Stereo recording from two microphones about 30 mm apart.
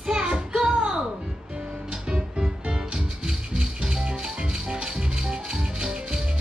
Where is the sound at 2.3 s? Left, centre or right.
Right.